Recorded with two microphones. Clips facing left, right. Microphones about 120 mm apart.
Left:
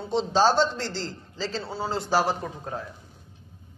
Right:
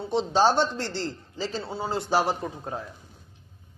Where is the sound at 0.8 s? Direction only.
60° right (ahead or behind).